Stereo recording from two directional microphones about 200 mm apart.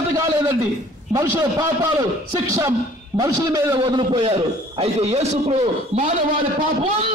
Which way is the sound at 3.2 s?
15° right (ahead or behind).